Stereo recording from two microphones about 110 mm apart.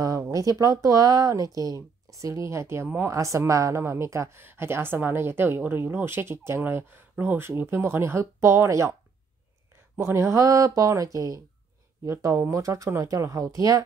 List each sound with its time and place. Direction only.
0.0 s speech: 30° right (ahead or behind)
9.9 s speech: 25° right (ahead or behind)